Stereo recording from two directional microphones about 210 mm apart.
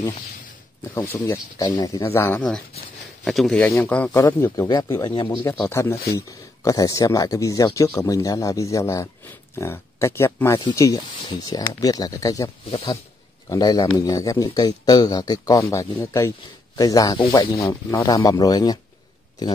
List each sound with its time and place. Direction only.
0.9 s speech: 10° left (ahead or behind)